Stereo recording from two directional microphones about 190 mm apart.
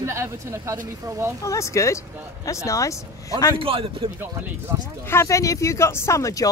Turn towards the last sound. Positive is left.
turn(degrees=15)  # may be behind; listen again after turning